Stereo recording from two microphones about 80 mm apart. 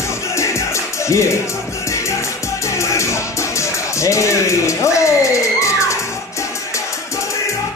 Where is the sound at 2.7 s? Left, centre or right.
Left.